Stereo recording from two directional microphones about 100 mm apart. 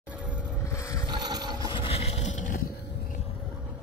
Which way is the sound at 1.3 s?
45° right (ahead or behind).